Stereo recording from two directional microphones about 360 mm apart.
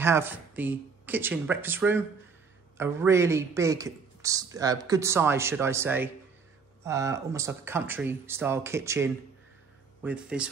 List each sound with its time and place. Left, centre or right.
0.0 s a man's voice: centre